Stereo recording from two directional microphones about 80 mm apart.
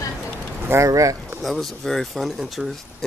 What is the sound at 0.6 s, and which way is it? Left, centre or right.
Speech, right.